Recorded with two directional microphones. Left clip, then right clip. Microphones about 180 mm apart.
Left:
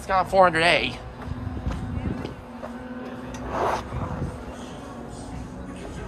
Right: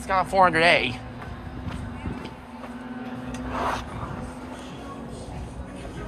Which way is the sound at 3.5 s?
60° left (ahead or behind).